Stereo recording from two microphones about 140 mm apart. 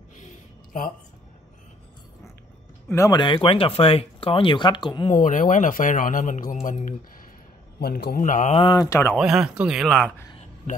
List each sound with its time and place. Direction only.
2.9 s speech: 20° left (ahead or behind)
3.2 s speech: 40° left (ahead or behind)
5.1 s speech: 65° left (ahead or behind)
7.9 s speech: 80° left
8.5 s speech: 30° left (ahead or behind)
9.1 s speech: 5° right (ahead or behind)
10.7 s a man's voice: 60° left (ahead or behind)